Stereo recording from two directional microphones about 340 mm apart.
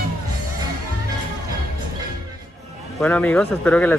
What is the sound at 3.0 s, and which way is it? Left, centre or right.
Speech, centre.